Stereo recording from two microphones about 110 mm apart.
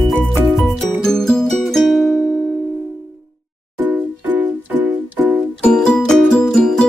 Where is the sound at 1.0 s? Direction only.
5° left (ahead or behind).